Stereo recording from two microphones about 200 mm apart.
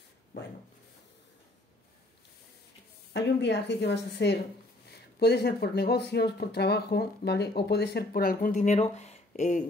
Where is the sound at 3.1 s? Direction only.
60° left (ahead or behind).